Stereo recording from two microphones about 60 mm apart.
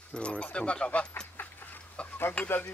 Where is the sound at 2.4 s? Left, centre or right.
Centre.